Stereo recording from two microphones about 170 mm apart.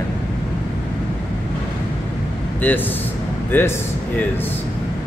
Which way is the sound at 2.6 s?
10° left (ahead or behind).